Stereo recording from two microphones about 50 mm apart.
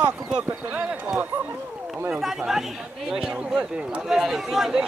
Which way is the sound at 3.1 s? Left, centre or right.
Centre.